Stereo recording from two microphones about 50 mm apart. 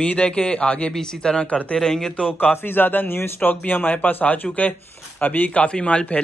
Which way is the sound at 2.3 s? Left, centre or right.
Left.